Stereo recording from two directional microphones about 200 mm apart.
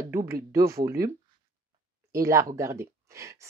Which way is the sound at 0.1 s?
15° right (ahead or behind).